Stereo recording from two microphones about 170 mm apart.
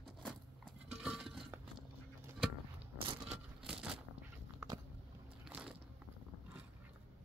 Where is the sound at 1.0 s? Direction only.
Centre (ahead or behind).